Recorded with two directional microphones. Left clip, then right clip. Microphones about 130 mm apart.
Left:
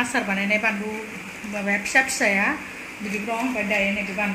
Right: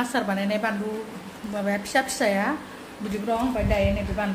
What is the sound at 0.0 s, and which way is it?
Speech, 10° right (ahead or behind).